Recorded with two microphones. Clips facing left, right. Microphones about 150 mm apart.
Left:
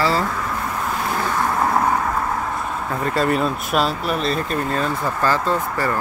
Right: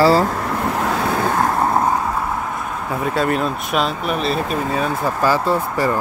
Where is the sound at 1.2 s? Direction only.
50° right (ahead or behind).